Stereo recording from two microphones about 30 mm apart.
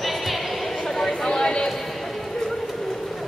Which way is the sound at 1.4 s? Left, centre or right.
Left.